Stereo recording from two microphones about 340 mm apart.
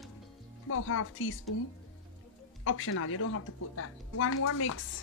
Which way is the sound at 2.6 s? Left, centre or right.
Left.